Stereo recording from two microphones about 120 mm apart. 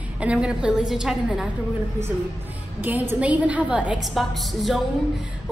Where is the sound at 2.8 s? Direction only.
15° right (ahead or behind).